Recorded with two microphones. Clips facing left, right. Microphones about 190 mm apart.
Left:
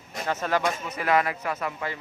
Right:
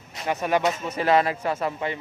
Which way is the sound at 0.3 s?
15° right (ahead or behind).